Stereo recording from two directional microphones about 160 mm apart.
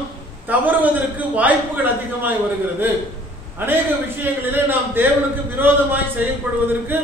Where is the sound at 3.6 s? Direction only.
15° right (ahead or behind).